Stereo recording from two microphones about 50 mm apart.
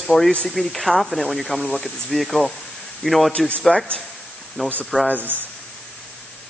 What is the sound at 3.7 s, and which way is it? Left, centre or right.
A man's voice, left.